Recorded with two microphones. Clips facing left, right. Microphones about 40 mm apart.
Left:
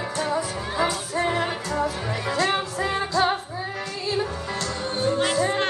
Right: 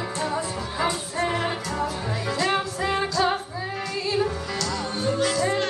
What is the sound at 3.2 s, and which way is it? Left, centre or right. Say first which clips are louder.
Music: left 2 dB; left.